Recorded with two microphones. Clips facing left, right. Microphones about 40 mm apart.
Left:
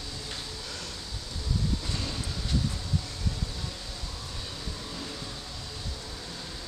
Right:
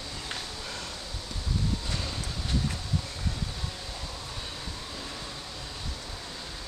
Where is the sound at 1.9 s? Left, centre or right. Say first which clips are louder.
Even; centre.